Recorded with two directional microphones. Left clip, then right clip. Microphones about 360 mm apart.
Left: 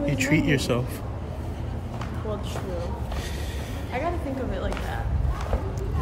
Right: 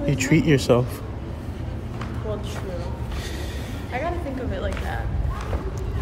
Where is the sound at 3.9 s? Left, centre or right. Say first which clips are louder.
Right 1 dB; centre.